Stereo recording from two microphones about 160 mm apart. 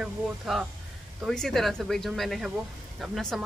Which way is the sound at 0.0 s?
5° right (ahead or behind).